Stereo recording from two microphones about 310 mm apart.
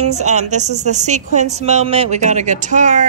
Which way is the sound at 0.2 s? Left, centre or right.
Right.